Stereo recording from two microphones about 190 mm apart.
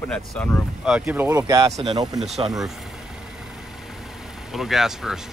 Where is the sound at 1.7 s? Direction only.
35° right (ahead or behind).